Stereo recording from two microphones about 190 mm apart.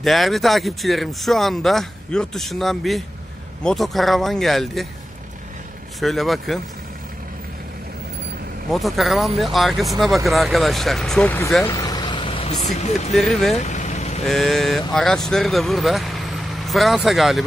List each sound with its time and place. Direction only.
0.0 s speech: centre (ahead or behind)
5.9 s speech: centre (ahead or behind)
8.7 s speech: centre (ahead or behind)
11.7 s vehicle: 20° left (ahead or behind)
12.6 s speech: 35° left (ahead or behind)
13.1 s speech: centre (ahead or behind)
13.6 s vehicle: 40° left (ahead or behind)
14.2 s speech: centre (ahead or behind)